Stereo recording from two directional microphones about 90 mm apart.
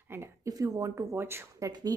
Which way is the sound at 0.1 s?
30° right (ahead or behind).